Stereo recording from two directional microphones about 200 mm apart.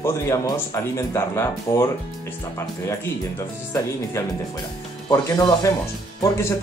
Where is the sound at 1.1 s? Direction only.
15° left (ahead or behind).